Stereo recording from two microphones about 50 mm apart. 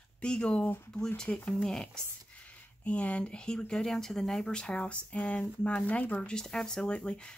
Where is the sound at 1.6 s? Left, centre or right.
Centre.